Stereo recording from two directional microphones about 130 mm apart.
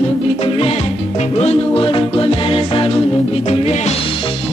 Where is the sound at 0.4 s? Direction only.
45° left (ahead or behind).